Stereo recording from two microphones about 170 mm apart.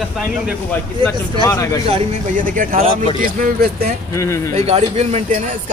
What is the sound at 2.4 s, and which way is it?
Speech, 50° right (ahead or behind).